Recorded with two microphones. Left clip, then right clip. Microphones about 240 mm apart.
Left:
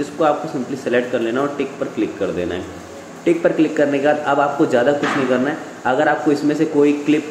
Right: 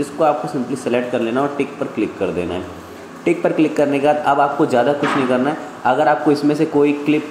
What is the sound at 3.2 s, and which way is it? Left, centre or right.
Speech, centre.